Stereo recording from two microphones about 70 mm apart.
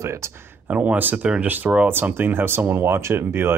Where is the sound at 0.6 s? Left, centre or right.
Centre.